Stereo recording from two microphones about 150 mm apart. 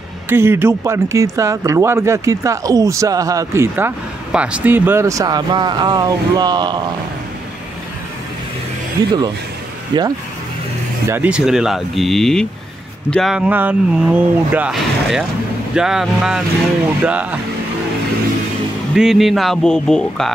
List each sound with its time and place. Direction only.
0.3 s speech: 15° right (ahead or behind)
9.0 s speech: 25° right (ahead or behind)
11.1 s speech: 10° right (ahead or behind)
18.9 s speech: centre (ahead or behind)